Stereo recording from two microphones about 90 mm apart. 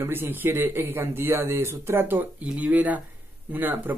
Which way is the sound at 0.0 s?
25° right (ahead or behind).